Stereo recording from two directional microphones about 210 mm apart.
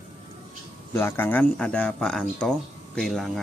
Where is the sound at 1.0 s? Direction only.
10° left (ahead or behind).